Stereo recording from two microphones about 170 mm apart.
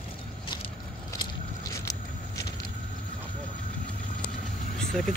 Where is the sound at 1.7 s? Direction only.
20° left (ahead or behind).